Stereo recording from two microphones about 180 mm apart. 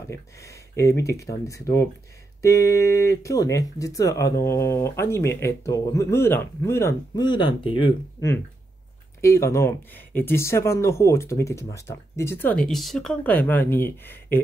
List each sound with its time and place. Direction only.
0.1 s speech: 15° left (ahead or behind)
9.2 s speech: 15° left (ahead or behind)